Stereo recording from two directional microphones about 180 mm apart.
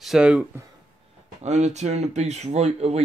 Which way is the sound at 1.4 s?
40° right (ahead or behind).